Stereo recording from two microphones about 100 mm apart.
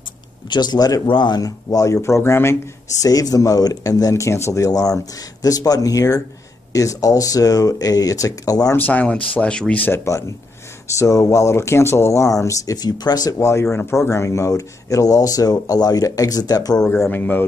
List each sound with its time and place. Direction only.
0.5 s speech: 45° left (ahead or behind)
1.0 s speech: 50° left (ahead or behind); by 2.5 s 25° left (ahead or behind)
3.0 s speech: 40° left (ahead or behind)
8.7 s speech: 15° left (ahead or behind)
10.0 s speech: 30° left (ahead or behind)
16.9 s speech: 20° left (ahead or behind)